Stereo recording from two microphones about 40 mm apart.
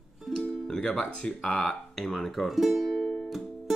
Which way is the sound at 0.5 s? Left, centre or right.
Centre.